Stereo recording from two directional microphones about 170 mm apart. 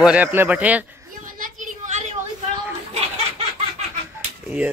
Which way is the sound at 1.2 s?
50° right (ahead or behind).